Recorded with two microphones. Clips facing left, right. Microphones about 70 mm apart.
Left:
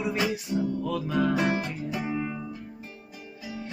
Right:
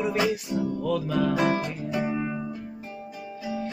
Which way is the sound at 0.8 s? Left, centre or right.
Left.